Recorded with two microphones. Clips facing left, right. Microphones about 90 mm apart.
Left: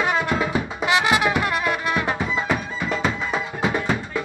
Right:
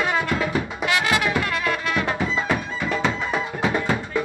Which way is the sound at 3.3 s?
20° left (ahead or behind).